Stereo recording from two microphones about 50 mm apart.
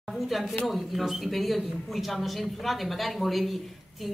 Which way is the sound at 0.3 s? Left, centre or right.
Centre.